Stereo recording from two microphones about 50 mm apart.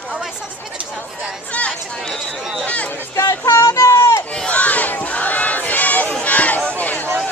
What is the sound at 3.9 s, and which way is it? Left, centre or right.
Crowd, left.